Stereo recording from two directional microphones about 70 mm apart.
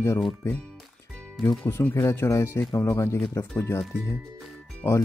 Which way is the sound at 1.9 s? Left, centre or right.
Left.